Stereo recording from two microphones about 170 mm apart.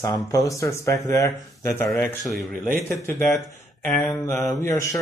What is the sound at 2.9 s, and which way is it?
Speech, 15° left (ahead or behind).